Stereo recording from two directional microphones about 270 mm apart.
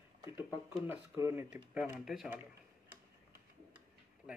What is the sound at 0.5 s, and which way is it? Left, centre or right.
Speech, centre.